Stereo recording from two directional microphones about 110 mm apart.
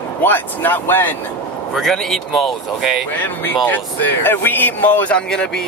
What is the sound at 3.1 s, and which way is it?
Speech, 15° left (ahead or behind).